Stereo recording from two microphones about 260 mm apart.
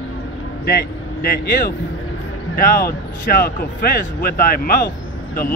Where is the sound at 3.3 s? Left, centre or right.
Left.